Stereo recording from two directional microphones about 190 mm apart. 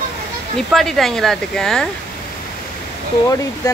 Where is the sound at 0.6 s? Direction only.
Centre (ahead or behind).